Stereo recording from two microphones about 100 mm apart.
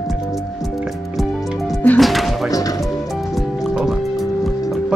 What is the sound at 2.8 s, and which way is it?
Music, centre (ahead or behind).